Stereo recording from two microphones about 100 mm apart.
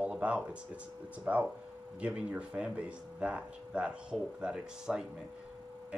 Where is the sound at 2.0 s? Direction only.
10° right (ahead or behind).